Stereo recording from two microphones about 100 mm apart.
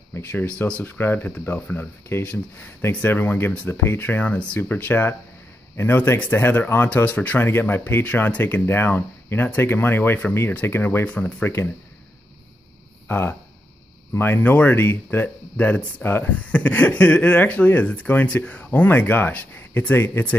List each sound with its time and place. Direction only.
0.1 s speech: 20° left (ahead or behind)
13.1 s speech: 20° left (ahead or behind)